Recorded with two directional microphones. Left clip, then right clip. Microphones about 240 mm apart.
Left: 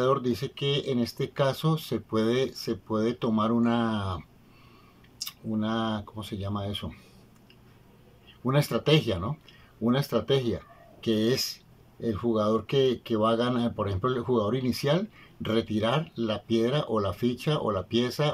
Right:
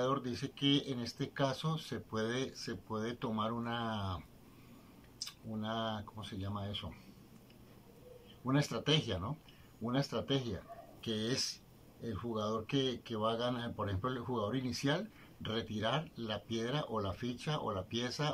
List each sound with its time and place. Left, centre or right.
0.0 s speech: left
5.2 s speech: left
8.5 s speech: left